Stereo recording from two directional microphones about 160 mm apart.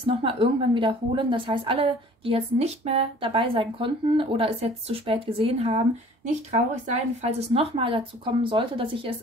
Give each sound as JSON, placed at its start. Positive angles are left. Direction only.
{"t": 0.0, "sound": "a woman's voice", "side_deg": -35}